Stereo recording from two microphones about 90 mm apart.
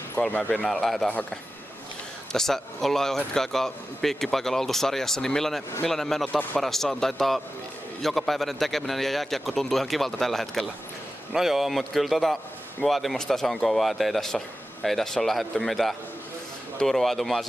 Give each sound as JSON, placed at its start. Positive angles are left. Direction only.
{"t": 0.3, "sound": "speech", "side_deg": 20}
{"t": 0.7, "sound": "a man's voice", "side_deg": 0}
{"t": 2.3, "sound": "a man's voice", "side_deg": 5}
{"t": 6.2, "sound": "speech", "side_deg": 15}
{"t": 6.6, "sound": "a man's voice", "side_deg": 5}